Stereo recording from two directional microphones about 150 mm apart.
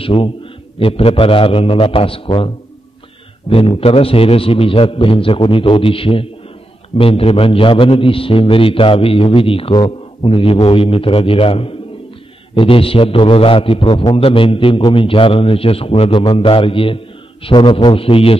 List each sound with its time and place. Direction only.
0.0 s a man's voice: 40° left (ahead or behind)
14.8 s a man's voice: 25° left (ahead or behind)
15.0 s a man's voice: 35° left (ahead or behind)